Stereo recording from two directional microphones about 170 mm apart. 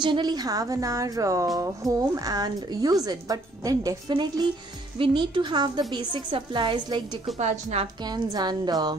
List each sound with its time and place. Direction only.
0.0 s a woman's voice: 25° right (ahead or behind)
7.3 s a woman's voice: 45° right (ahead or behind)
8.0 s a woman's voice: 25° right (ahead or behind)